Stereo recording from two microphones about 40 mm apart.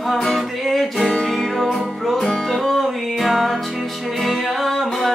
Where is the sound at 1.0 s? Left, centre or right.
Centre.